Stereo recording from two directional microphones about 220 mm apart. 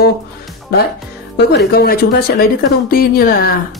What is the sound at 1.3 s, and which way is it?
Speech, 50° left (ahead or behind).